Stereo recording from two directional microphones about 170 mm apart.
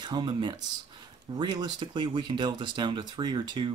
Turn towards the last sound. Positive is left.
turn(degrees=-25)  # may be behind; listen again after turning